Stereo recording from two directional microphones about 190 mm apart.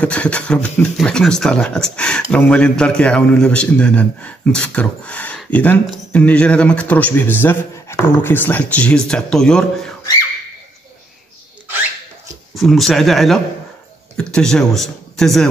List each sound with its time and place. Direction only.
0.0 s speech: 5° left (ahead or behind)
12.5 s speech: centre (ahead or behind)